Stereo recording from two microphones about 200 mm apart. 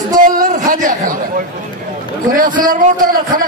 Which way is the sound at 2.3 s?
45° right (ahead or behind).